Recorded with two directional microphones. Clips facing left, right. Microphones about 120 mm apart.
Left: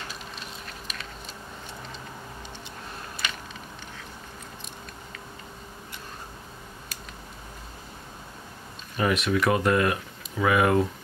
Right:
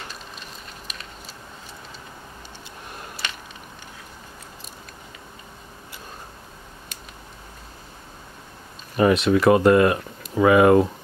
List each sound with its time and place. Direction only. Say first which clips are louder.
8.9 s speech: right 7 dB; 30° right (ahead or behind)